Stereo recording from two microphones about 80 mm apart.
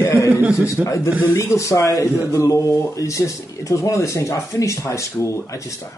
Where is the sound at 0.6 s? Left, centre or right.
Left.